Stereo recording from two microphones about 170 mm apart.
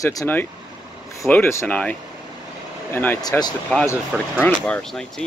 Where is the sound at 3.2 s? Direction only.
25° left (ahead or behind).